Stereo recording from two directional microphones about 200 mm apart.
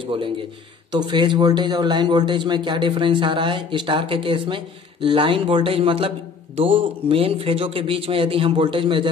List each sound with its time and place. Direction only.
0.0 s speech: 25° right (ahead or behind)